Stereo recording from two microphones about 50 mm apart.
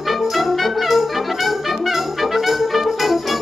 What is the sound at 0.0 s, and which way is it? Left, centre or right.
Brass instrument, centre.